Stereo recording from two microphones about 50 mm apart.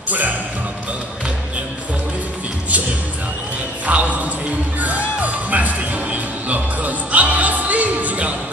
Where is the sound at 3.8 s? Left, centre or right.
Right.